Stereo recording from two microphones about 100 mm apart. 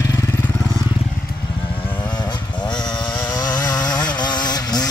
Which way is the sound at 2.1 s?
45° left (ahead or behind).